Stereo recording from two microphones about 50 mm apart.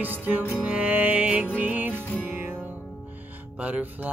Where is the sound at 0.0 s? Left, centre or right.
Right.